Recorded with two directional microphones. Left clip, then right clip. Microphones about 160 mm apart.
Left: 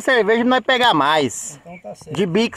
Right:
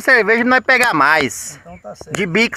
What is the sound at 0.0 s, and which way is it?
Speech, centre (ahead or behind).